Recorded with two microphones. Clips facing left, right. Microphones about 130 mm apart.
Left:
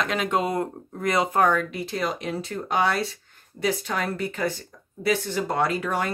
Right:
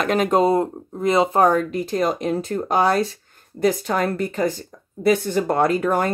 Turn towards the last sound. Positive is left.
turn(degrees=-45)  # may be behind; listen again after turning